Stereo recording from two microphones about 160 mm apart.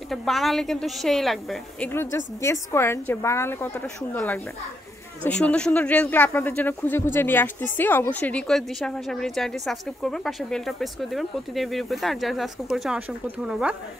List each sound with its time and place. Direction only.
0.1 s speech: centre (ahead or behind)
1.9 s a woman's voice: 15° left (ahead or behind); by 13.7 s 5° right (ahead or behind)